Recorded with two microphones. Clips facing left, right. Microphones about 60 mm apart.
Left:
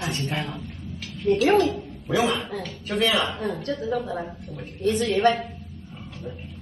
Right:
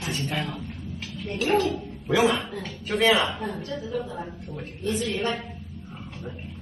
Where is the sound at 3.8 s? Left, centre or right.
Left.